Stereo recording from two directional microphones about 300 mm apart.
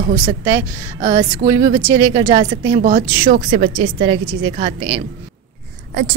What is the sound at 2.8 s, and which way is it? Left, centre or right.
A woman's voice, right.